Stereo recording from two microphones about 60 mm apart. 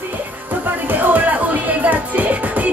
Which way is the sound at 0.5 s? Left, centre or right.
Right.